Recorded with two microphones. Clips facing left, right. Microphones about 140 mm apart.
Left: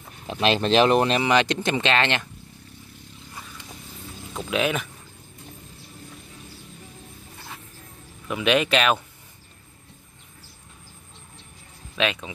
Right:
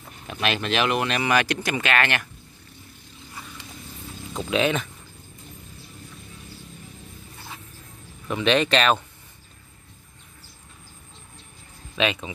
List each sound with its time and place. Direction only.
0.3 s speech: 30° left (ahead or behind)
1.2 s speech: 20° left (ahead or behind)
4.3 s speech: 5° left (ahead or behind)
8.3 s speech: 5° left (ahead or behind)
11.9 s speech: centre (ahead or behind)